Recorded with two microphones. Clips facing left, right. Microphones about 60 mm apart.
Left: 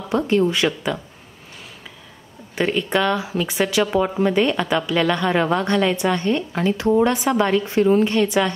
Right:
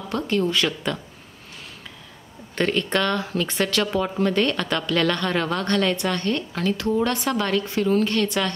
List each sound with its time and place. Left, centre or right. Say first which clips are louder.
0.1 s speech: left 5 dB; centre
2.5 s speech: left 2 dB; centre